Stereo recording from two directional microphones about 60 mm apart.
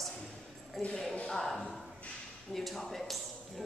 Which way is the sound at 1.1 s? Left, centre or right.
Centre.